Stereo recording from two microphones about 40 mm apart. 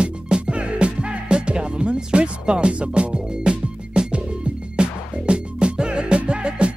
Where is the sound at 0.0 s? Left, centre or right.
Right.